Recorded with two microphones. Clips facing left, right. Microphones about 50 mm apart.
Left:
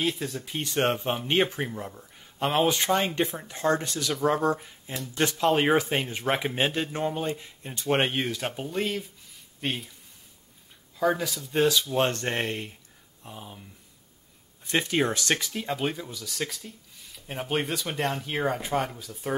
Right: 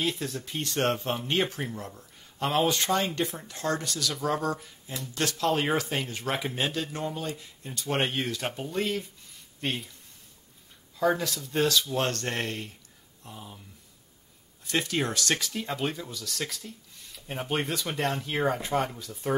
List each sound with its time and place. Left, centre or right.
0.0 s speech: centre; by 8.0 s left
8.0 s speech: centre
11.0 s speech: centre; by 13.6 s left
14.7 s speech: left
15.3 s speech: centre